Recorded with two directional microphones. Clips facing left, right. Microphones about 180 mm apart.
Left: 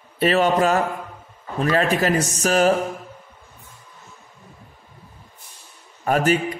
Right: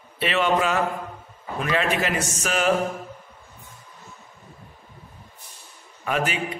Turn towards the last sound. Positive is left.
turn(degrees=40)  # may be behind; listen again after turning